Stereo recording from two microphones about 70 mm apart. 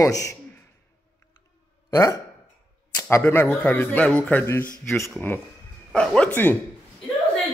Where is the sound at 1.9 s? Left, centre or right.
Left.